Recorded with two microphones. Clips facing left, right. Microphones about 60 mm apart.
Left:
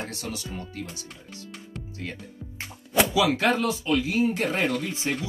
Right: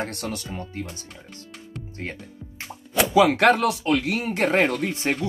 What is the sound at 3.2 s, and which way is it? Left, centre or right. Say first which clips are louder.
Speech: right 9 dB; right.